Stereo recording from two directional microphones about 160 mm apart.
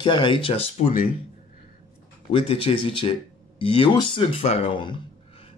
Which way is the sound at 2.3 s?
35° left (ahead or behind).